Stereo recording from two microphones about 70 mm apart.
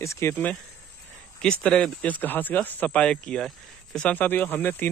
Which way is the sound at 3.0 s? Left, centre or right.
Centre.